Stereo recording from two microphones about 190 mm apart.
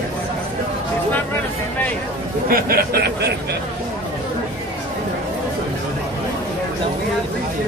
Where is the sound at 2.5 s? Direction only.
50° right (ahead or behind).